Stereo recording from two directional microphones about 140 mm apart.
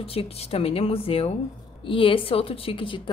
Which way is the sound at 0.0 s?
45° left (ahead or behind).